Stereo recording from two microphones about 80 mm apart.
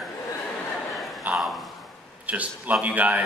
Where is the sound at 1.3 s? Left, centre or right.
Centre.